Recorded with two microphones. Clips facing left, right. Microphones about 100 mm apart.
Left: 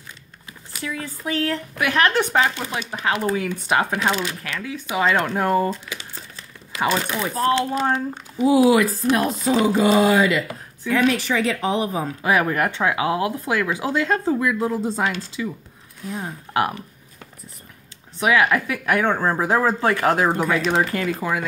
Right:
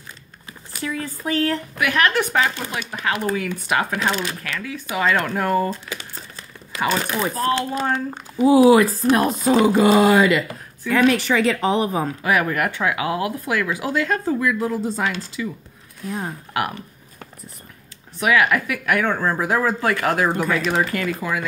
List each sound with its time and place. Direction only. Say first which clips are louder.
0.7 s speech: right 2 dB; 40° right (ahead or behind)
1.8 s speech: left 1 dB; 30° left (ahead or behind)
5.7 s crumpling: even; 45° right (ahead or behind)
6.9 s a woman's voice: right 2 dB; 40° right (ahead or behind)
12.2 s speech: left 2 dB; 25° left (ahead or behind)
16.1 s speech: right 2 dB; 50° right (ahead or behind)
18.2 s speech: even; 25° left (ahead or behind)